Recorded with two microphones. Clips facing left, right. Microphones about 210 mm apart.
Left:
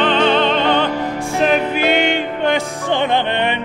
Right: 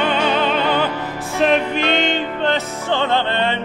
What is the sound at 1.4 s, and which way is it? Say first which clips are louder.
Music: even; 5° left (ahead or behind).